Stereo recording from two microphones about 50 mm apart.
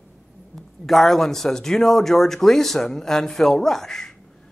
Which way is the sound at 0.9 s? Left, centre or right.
Centre.